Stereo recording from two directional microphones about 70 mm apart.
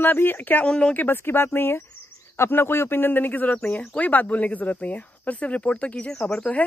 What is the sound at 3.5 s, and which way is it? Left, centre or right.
Speech, centre.